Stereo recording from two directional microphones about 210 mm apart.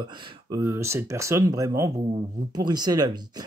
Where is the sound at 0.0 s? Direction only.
15° right (ahead or behind).